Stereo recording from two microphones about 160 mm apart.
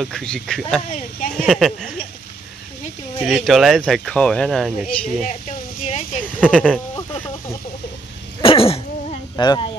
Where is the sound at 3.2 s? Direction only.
Centre (ahead or behind).